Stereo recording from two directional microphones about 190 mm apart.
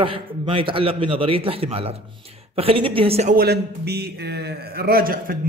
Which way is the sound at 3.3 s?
60° right (ahead or behind).